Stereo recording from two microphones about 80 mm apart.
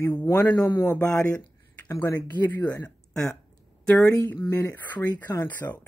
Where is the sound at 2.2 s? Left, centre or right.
Left.